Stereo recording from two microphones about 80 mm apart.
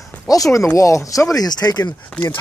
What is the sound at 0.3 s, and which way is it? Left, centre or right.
Speech, left.